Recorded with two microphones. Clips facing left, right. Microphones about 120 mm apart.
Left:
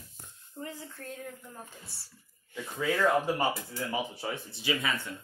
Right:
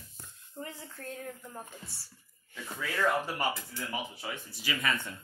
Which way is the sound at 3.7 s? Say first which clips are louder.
Left 4 dB; 30° left (ahead or behind).